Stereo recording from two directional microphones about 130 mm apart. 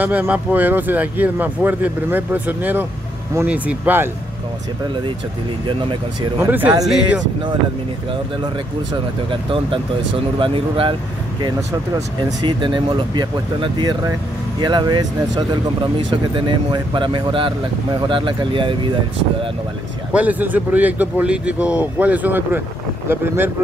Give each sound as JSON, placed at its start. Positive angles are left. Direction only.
{"t": 0.0, "sound": "speech", "side_deg": -10}
{"t": 6.4, "sound": "speech", "side_deg": -15}
{"t": 9.3, "sound": "speech", "side_deg": -40}
{"t": 12.4, "sound": "speech", "side_deg": -40}
{"t": 20.1, "sound": "speech", "side_deg": -10}